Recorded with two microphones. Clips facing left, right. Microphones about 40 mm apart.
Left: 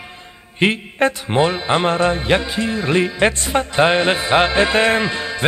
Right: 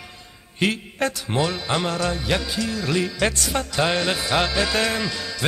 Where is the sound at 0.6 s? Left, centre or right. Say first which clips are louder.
Left 6 dB; left.